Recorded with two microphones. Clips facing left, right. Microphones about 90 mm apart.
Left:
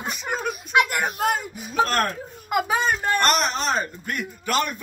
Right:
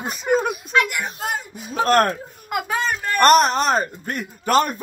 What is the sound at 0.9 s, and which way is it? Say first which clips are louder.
Speech: left 3 dB; 45° left (ahead or behind).